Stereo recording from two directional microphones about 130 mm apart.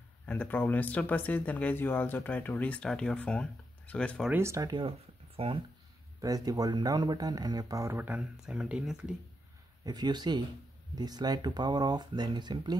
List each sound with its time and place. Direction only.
0.3 s speech: 15° left (ahead or behind)
4.3 s speech: 20° right (ahead or behind)
4.7 s speech: 45° right (ahead or behind)
6.2 s speech: 25° right (ahead or behind); by 9.1 s 5° right (ahead or behind)
9.8 s speech: 35° right (ahead or behind)